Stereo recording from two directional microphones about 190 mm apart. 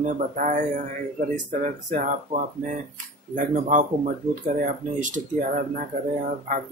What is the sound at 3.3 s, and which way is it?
Speech, 45° right (ahead or behind).